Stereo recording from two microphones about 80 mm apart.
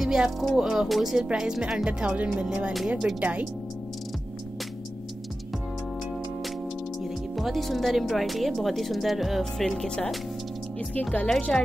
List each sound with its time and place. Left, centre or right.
0.0 s speech: centre
7.0 s speech: centre